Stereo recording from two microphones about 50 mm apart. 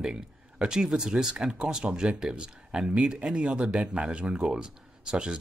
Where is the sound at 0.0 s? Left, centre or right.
Centre.